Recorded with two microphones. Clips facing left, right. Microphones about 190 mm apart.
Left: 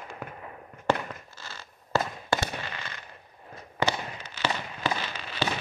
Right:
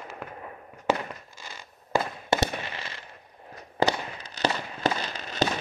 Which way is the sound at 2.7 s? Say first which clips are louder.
Right 1 dB; 30° right (ahead or behind).